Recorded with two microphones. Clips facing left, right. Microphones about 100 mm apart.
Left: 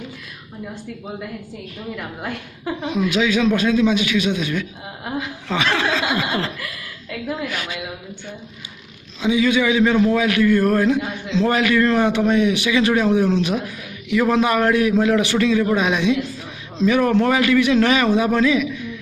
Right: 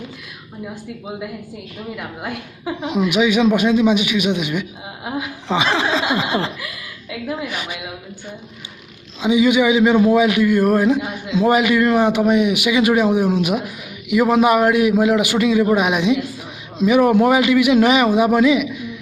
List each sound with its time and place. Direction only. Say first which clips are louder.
2.0 s a man's voice: right 1 dB; 5° right (ahead or behind)
9.2 s a man's voice: right 3 dB; 15° right (ahead or behind)